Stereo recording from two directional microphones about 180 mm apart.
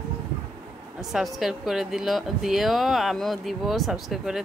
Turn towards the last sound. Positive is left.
turn(degrees=0)  # may be behind; listen again after turning